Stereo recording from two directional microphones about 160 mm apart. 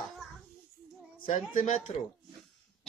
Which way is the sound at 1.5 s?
55° left (ahead or behind).